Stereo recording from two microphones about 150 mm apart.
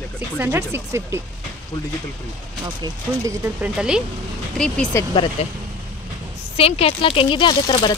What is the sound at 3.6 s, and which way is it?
Speech, 5° right (ahead or behind).